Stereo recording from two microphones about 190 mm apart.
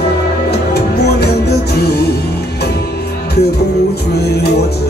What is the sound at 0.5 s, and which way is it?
Music, 60° left (ahead or behind).